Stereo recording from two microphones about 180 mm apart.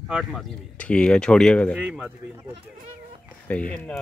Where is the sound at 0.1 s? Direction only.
Centre (ahead or behind).